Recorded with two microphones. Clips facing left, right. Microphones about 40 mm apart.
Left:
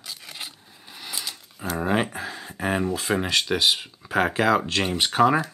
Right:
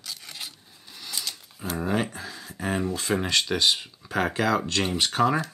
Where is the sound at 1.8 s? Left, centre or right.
Left.